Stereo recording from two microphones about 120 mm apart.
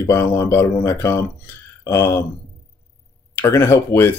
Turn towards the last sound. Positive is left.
turn(degrees=20)  # may be behind; listen again after turning